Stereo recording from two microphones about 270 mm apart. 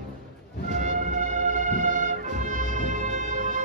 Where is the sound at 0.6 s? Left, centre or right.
Right.